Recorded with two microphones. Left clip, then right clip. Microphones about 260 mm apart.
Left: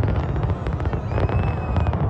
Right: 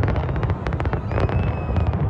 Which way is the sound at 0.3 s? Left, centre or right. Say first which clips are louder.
Right 1 dB; centre.